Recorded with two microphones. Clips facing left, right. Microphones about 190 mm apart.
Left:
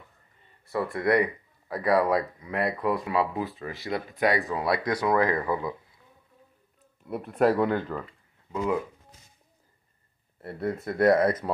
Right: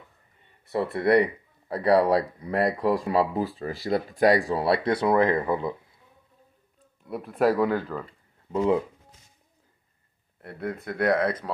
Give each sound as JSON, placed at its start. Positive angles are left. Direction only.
{"t": 0.9, "sound": "speech", "side_deg": -25}
{"t": 7.1, "sound": "speech", "side_deg": 0}
{"t": 8.5, "sound": "speech", "side_deg": -30}
{"t": 10.4, "sound": "speech", "side_deg": 0}